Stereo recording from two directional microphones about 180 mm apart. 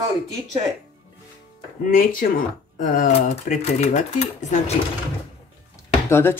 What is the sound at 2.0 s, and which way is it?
Speech, 50° left (ahead or behind).